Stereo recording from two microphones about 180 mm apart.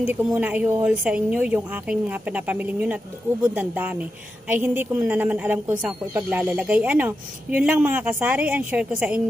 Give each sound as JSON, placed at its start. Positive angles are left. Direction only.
{"t": 0.0, "sound": "a woman's voice", "side_deg": -5}